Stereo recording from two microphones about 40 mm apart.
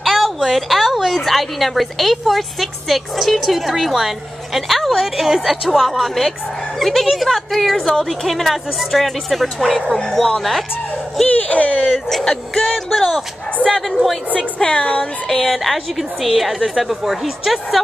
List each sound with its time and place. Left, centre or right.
0.0 s a woman's voice: centre
11.3 s speech: left
11.9 s a woman's voice: centre
14.6 s speech: left
15.2 s a woman's voice: centre